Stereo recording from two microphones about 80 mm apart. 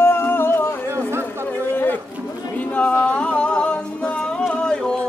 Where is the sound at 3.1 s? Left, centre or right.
Centre.